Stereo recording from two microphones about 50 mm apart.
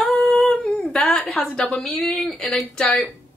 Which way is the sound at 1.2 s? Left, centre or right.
Centre.